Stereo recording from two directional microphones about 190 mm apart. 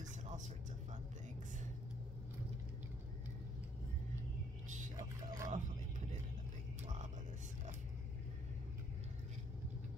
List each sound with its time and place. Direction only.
4.9 s vehicle: 20° right (ahead or behind)
6.8 s music: 40° right (ahead or behind)